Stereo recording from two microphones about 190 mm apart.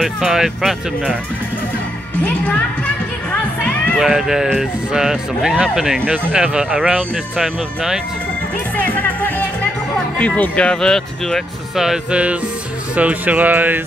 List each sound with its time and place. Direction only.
0.0 s speech: 5° right (ahead or behind)
3.3 s speech: 5° left (ahead or behind)
8.7 s speech: 10° left (ahead or behind); by 13.7 s 10° right (ahead or behind)